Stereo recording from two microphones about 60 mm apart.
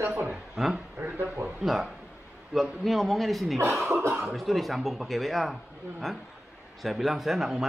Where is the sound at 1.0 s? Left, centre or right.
Right.